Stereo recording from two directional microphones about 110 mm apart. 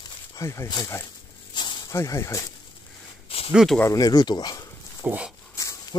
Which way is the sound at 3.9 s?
35° left (ahead or behind).